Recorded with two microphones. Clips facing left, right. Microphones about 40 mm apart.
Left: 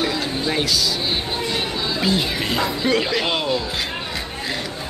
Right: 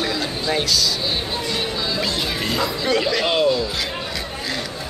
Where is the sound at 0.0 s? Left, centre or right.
Centre.